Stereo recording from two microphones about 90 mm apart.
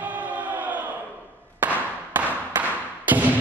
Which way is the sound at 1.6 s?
20° right (ahead or behind).